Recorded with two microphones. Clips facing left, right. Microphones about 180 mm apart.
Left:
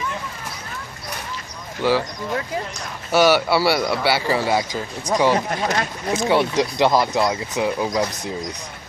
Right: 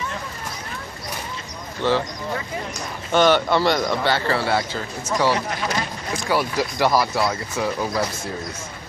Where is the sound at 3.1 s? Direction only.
10° left (ahead or behind).